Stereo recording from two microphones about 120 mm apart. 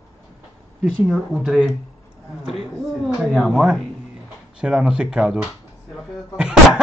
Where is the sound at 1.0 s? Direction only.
5° right (ahead or behind).